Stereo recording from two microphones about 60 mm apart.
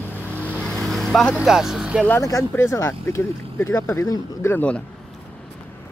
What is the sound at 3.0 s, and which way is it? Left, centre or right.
Speech, left.